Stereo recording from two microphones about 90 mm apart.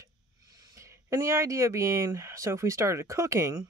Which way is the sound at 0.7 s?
35° right (ahead or behind).